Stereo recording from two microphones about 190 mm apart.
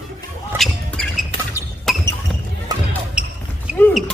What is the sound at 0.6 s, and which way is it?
Basketball bounce, centre (ahead or behind).